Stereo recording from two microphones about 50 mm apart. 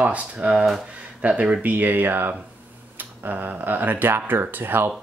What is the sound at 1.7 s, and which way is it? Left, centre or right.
Speech, right.